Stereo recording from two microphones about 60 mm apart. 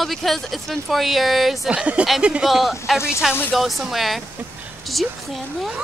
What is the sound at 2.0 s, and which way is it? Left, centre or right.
Speech, centre.